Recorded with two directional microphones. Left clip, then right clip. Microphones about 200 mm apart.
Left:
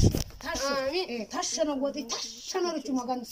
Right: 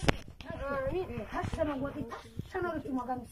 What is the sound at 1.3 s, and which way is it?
Speech, 15° left (ahead or behind).